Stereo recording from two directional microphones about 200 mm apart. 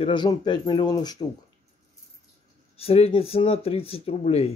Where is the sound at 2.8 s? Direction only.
30° left (ahead or behind).